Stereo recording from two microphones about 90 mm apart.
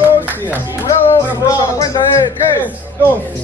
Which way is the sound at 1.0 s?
35° left (ahead or behind).